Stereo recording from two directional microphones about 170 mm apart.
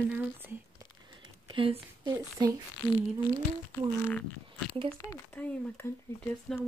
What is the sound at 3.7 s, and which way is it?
Speech, 10° left (ahead or behind).